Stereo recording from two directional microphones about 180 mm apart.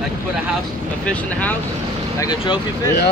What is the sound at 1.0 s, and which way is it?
Speech, 10° left (ahead or behind).